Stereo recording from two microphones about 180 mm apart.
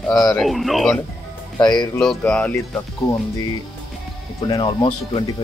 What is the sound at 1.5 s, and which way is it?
Speech, 25° left (ahead or behind).